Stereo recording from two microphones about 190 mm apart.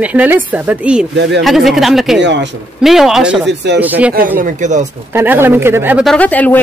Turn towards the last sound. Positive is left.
turn(degrees=10)  # may be behind; listen again after turning